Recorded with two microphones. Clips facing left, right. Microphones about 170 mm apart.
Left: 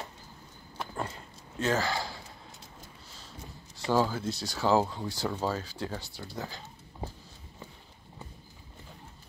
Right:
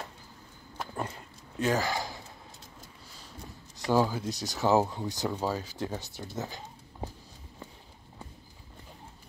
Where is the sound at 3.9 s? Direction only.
15° right (ahead or behind).